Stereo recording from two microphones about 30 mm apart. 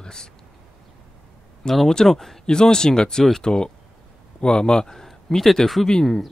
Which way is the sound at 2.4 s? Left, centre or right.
Left.